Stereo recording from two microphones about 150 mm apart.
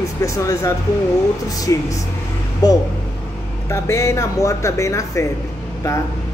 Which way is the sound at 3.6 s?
20° left (ahead or behind).